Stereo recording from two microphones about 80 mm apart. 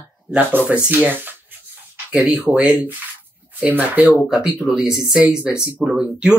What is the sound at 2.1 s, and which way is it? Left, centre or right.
Speech, centre.